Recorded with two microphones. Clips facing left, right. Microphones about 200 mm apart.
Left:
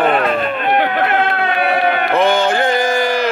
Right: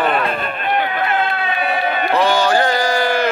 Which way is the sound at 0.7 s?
75° left (ahead or behind).